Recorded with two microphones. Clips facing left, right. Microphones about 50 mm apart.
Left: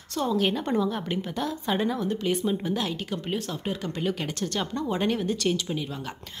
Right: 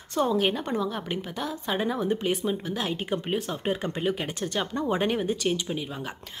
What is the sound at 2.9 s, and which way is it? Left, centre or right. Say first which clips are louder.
Speech: right 2 dB; right.